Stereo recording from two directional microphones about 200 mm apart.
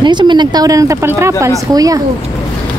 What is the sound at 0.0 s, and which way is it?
A woman's voice, 20° right (ahead or behind).